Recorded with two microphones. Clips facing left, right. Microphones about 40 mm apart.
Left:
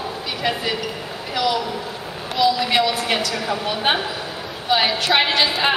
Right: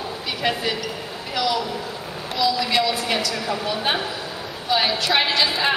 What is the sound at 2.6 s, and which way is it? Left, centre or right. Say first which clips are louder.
A woman's voice: left 2 dB; left.